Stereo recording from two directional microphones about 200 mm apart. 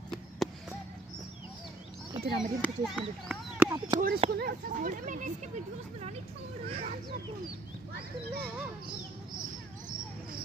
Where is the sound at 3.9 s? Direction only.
20° right (ahead or behind).